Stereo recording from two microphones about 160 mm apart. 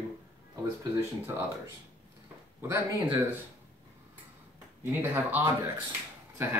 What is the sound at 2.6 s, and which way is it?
Speech, 15° right (ahead or behind).